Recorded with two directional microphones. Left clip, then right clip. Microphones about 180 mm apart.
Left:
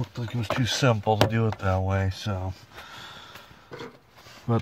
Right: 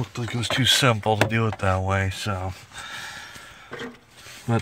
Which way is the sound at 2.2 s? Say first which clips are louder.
Right 5 dB; 30° right (ahead or behind).